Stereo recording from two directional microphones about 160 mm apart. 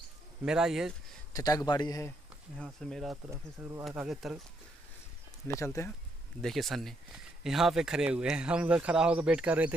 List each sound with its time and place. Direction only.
0.5 s speech: 5° right (ahead or behind)
1.3 s a man's voice: 20° left (ahead or behind)
2.5 s speech: 5° left (ahead or behind)
3.3 s speech: 15° right (ahead or behind)
3.9 s speech: 5° right (ahead or behind)
5.5 s a man's voice: 20° left (ahead or behind)
6.4 s speech: centre (ahead or behind)